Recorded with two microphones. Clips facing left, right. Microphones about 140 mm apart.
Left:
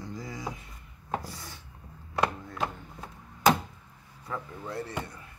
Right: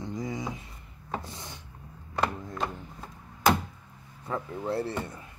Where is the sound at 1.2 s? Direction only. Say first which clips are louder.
Right 1 dB; 20° right (ahead or behind).